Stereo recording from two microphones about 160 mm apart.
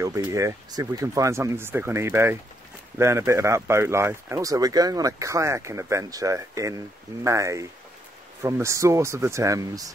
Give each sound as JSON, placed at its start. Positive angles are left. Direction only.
{"t": 0.0, "sound": "speech", "side_deg": -20}